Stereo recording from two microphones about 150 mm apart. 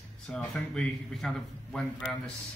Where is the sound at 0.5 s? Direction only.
Centre (ahead or behind).